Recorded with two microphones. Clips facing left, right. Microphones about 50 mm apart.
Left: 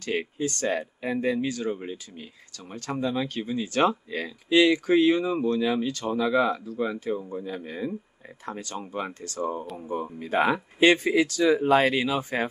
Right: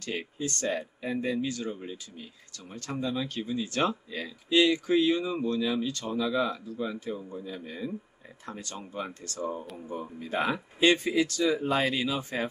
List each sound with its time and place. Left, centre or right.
0.0 s speech: left